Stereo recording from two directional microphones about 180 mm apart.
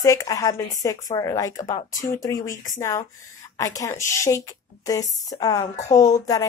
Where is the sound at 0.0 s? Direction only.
20° left (ahead or behind).